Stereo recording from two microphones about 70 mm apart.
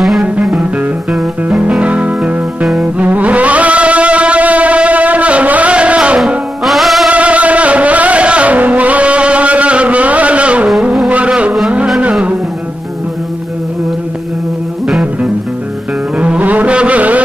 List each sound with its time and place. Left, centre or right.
0.2 s music: centre
6.6 s music: centre
7.1 s music: centre
16.2 s music: centre